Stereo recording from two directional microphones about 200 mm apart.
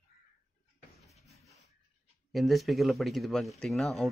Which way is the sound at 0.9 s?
Centre (ahead or behind).